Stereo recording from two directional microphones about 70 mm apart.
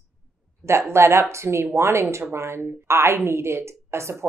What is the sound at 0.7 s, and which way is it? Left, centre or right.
A woman's voice, right.